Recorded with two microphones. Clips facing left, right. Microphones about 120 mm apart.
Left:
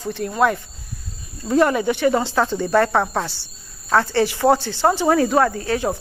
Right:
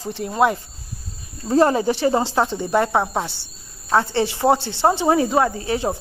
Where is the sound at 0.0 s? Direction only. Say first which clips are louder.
Even; 30° right (ahead or behind).